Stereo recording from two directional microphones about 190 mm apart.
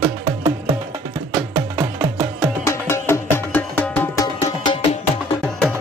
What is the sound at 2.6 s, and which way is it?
Music, 15° left (ahead or behind).